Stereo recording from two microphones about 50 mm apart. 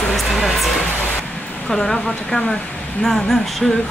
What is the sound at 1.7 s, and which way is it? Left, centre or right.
Speech, centre.